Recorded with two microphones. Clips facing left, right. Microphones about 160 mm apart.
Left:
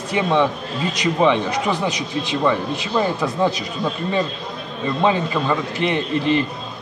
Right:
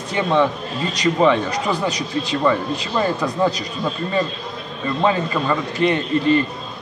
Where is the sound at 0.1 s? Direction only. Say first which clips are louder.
Even; 15° left (ahead or behind).